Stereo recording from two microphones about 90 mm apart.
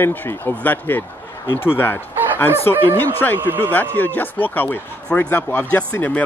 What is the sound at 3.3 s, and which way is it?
Speech, 25° right (ahead or behind).